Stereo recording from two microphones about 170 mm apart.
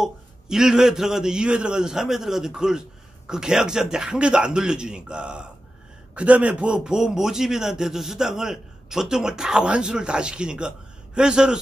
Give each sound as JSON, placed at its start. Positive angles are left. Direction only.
{"t": 0.0, "sound": "a man's voice", "side_deg": -5}